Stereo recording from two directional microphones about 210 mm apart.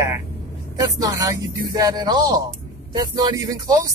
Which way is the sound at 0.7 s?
15° right (ahead or behind).